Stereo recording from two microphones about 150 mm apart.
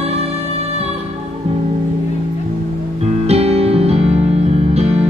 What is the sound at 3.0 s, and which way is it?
Music, 45° right (ahead or behind).